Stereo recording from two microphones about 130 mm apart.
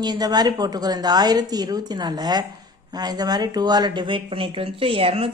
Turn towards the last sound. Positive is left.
turn(degrees=-45)  # may be behind; listen again after turning